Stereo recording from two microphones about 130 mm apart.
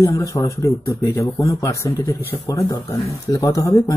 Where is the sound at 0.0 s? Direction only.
25° left (ahead or behind).